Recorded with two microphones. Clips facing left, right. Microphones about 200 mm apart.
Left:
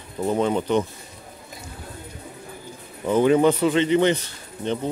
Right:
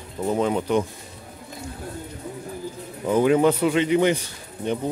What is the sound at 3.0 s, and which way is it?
A man's voice, 5° right (ahead or behind).